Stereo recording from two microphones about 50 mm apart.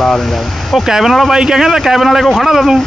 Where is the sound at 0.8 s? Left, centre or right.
Centre.